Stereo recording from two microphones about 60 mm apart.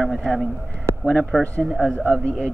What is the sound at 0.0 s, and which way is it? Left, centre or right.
A man's voice, centre.